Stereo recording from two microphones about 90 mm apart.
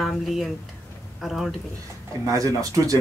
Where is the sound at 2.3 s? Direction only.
40° right (ahead or behind).